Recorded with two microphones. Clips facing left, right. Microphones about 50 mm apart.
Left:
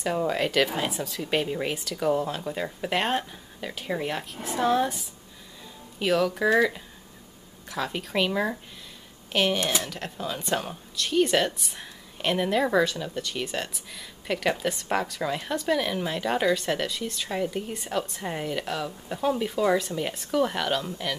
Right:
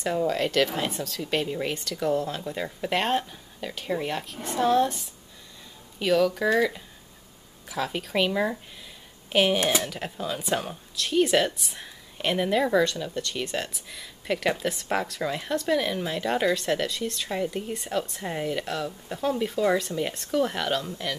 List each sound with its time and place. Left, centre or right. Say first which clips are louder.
0.3 s speech: even; centre
9.6 s speech: right 3 dB; centre
9.8 s speech: right 1 dB; centre